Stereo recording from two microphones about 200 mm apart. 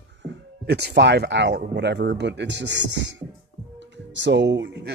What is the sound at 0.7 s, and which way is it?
Speech, 60° right (ahead or behind).